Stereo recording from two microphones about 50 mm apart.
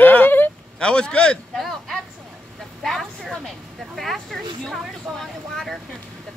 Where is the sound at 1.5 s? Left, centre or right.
Centre.